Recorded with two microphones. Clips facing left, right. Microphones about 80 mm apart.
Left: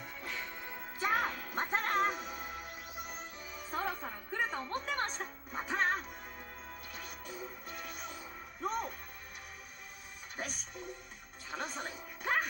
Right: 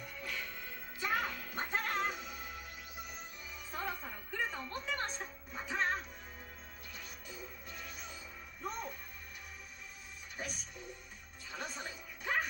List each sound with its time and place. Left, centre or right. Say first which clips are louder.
0.3 s music: left 2 dB; left
1.0 s music: left 3 dB; left
11.5 s music: left 3 dB; left